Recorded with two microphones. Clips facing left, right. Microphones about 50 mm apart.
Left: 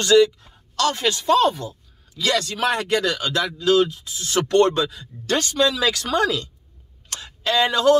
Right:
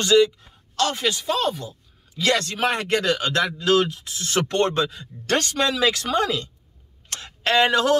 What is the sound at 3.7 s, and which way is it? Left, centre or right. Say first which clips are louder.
Speech: left 2 dB; right.